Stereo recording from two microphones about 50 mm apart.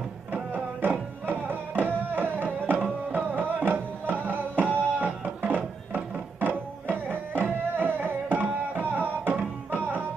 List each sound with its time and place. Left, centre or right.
0.3 s music: right